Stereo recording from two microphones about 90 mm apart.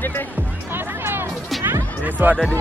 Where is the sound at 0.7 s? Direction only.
25° right (ahead or behind).